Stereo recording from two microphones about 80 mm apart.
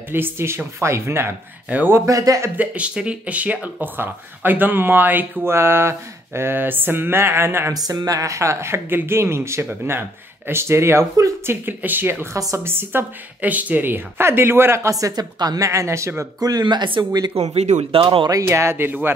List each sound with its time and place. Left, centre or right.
0.1 s speech: right
2.0 s speech: right
2.5 s speech: centre
7.7 s speech: right
11.4 s speech: right
12.4 s speech: right
12.6 s speech: right
15.3 s a woman's voice: right
15.7 s speech: right
16.3 s speech: right
16.6 s speech: right
18.3 s speech: right